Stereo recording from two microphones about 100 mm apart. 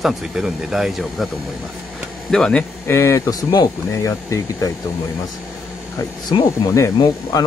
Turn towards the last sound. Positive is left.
turn(degrees=45)  # may be behind; listen again after turning